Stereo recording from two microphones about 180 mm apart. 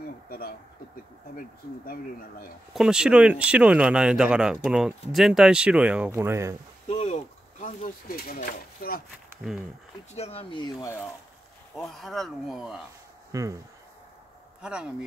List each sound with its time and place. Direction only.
0.3 s a sound: 55° left (ahead or behind)
1.9 s speech: 55° left (ahead or behind)
2.7 s speech: 5° right (ahead or behind)
6.9 s a sound: 40° left (ahead or behind)
10.1 s speech: 35° left (ahead or behind); by 11.1 s 15° left (ahead or behind)
11.7 s speech: centre (ahead or behind)
13.3 s speech: 20° right (ahead or behind)
14.6 s speech: 5° right (ahead or behind)